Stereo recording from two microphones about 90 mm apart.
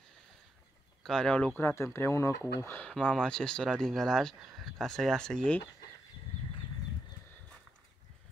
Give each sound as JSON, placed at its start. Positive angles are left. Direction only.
{"t": 1.0, "sound": "speech", "side_deg": 10}
{"t": 1.6, "sound": "speech", "side_deg": 25}
{"t": 2.9, "sound": "speech", "side_deg": 10}